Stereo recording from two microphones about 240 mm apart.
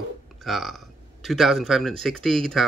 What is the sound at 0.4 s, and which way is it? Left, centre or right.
Speech, centre.